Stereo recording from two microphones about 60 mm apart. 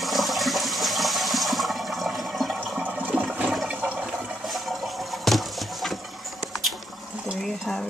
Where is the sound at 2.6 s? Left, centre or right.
Right.